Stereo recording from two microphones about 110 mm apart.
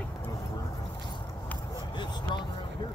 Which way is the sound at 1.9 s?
45° left (ahead or behind).